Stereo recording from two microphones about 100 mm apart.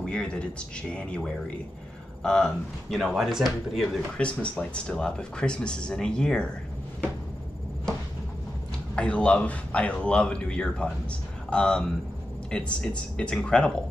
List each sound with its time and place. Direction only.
0.0 s speech: 10° left (ahead or behind)
8.9 s speech: 10° left (ahead or behind)